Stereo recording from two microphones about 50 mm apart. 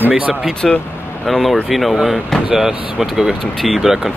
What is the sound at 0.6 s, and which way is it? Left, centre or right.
Speech, centre.